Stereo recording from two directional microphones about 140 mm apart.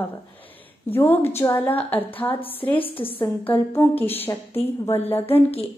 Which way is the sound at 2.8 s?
40° left (ahead or behind).